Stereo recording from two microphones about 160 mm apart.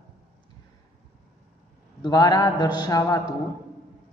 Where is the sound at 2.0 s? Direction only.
25° left (ahead or behind).